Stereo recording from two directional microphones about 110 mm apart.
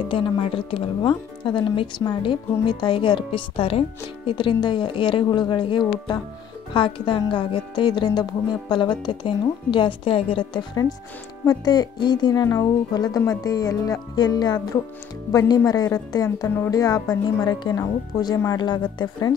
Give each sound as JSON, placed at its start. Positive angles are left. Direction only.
{"t": 0.1, "sound": "speech", "side_deg": 50}